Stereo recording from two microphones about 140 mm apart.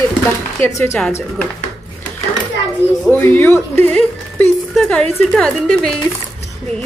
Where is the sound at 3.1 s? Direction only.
15° left (ahead or behind).